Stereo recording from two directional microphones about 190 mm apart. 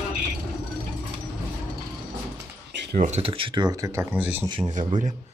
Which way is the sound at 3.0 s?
35° right (ahead or behind).